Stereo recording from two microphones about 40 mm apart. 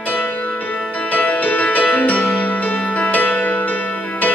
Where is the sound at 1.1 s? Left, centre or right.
Left.